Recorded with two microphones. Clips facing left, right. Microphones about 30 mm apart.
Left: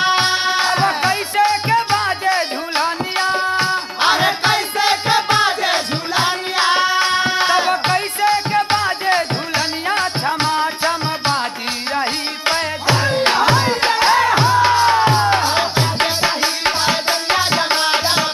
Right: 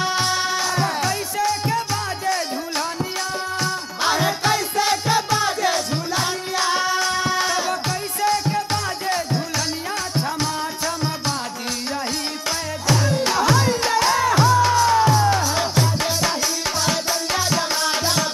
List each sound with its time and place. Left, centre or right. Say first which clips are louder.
0.0 s music: left 5 dB; left